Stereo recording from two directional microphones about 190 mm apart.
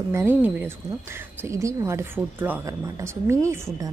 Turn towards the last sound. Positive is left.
turn(degrees=-15)  # may be behind; listen again after turning